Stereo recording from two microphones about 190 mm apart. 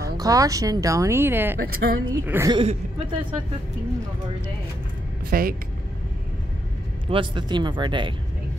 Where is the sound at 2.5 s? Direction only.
30° right (ahead or behind).